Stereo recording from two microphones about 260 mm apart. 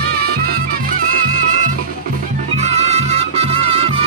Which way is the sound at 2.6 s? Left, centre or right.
Right.